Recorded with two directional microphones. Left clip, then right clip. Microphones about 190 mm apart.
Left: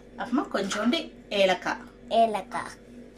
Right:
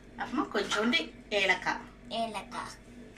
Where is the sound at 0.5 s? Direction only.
60° left (ahead or behind).